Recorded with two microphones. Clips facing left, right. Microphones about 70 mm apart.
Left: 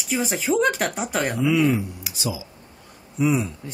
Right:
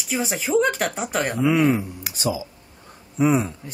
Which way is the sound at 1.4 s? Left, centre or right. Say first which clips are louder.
Right 2 dB; right.